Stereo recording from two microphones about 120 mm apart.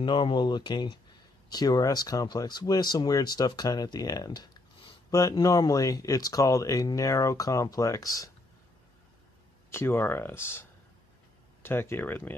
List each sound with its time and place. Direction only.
0.0 s speech: 40° left (ahead or behind)
9.7 s speech: 20° left (ahead or behind)